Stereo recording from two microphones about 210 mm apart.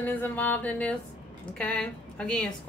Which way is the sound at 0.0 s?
10° left (ahead or behind).